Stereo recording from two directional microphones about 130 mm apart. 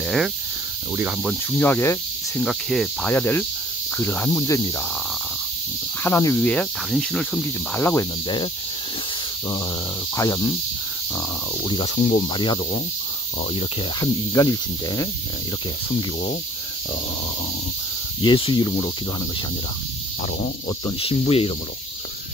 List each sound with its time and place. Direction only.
0.0 s speech: centre (ahead or behind)
1.6 s speech: 15° left (ahead or behind)
2.4 s speech: 5° left (ahead or behind)
3.1 s speech: 15° left (ahead or behind)
6.0 s speech: 20° left (ahead or behind)
6.3 s speech: 5° left (ahead or behind)
7.7 s speech: 20° left (ahead or behind)
10.1 s speech: 25° left (ahead or behind)
11.6 s speech: 40° left (ahead or behind)
14.3 s speech: 25° left (ahead or behind)
18.2 s speech: 35° left (ahead or behind)
20.6 s speech: 40° left (ahead or behind)